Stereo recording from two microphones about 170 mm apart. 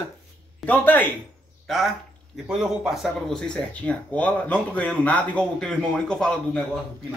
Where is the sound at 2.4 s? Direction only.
5° right (ahead or behind).